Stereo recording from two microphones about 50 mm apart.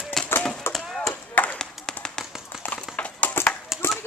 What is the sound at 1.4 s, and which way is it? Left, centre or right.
Clapping, left.